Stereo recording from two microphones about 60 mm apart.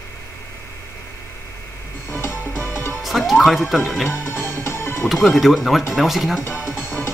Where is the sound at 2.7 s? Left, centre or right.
Left.